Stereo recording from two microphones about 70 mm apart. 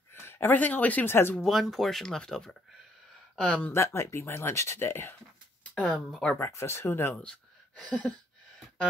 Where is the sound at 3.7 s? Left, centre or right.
Left.